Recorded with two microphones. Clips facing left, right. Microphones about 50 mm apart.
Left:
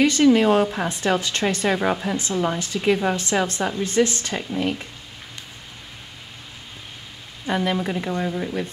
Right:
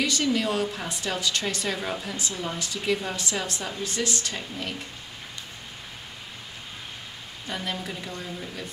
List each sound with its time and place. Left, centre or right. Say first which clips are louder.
0.0 s speech: left 9 dB; left
7.5 s speech: left 10 dB; left